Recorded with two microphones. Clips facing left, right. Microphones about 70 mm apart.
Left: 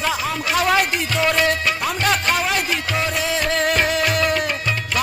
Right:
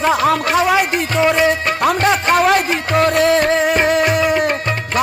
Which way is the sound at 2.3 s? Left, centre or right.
Right.